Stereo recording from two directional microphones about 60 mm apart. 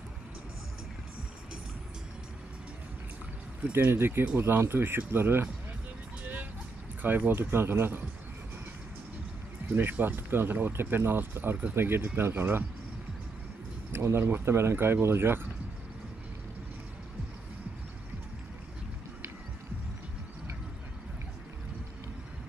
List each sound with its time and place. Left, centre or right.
3.7 s speech: right
7.0 s speech: right
9.7 s speech: right
13.9 s speech: right